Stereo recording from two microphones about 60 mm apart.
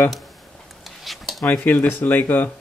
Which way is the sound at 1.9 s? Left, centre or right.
Left.